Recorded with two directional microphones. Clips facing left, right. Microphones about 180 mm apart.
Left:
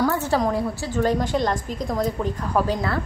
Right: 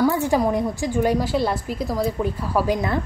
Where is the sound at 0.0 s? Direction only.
15° right (ahead or behind).